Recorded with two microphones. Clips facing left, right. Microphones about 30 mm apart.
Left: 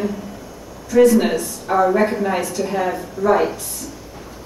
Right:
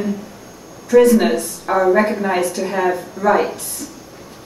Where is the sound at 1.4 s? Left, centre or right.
Centre.